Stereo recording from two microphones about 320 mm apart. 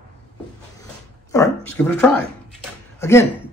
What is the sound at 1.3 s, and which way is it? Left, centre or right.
Speech, centre.